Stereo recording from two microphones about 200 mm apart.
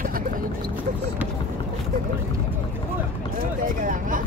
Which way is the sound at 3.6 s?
40° right (ahead or behind).